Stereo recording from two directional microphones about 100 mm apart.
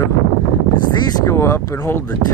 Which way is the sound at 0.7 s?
45° left (ahead or behind).